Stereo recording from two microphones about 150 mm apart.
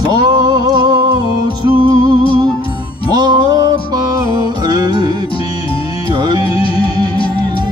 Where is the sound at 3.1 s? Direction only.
25° right (ahead or behind).